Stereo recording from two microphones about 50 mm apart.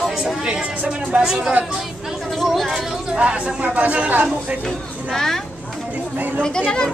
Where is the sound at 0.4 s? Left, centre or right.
Centre.